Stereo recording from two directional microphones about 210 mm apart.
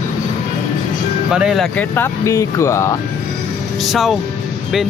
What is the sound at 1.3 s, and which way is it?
Speech, 5° right (ahead or behind).